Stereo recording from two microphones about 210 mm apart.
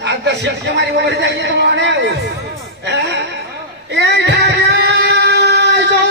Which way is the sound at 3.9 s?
55° right (ahead or behind).